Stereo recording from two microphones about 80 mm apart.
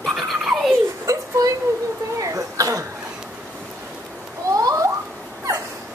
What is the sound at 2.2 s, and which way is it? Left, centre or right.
Throat clearing, right.